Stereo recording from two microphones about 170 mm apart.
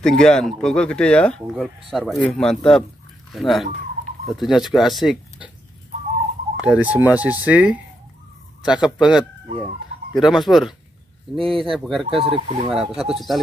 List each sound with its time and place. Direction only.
0.0 s speech: 5° left (ahead or behind)
6.5 s speech: 10° right (ahead or behind)
12.1 s speech: 35° right (ahead or behind)
12.6 s speech: centre (ahead or behind)